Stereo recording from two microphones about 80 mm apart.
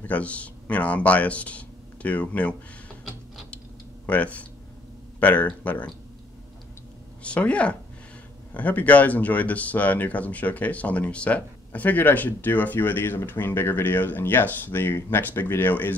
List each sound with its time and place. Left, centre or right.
0.0 s speech: centre
4.0 s speech: centre
7.2 s speech: centre